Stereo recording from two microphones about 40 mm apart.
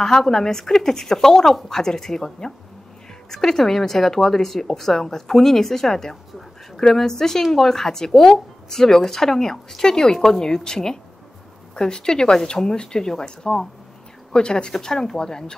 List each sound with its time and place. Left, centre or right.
0.2 s a woman's voice: centre